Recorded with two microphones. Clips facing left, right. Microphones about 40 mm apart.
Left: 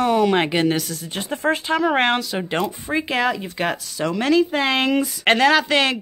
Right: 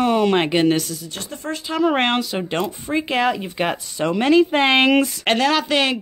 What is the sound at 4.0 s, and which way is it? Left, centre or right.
Speech, right.